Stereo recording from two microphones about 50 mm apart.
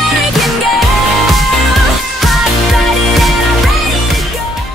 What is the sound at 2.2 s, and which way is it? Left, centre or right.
Music, centre.